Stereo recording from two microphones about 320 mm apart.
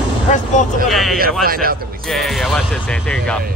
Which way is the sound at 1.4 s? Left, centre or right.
Right.